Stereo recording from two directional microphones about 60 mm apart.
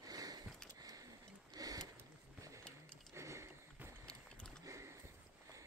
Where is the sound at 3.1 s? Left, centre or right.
Right.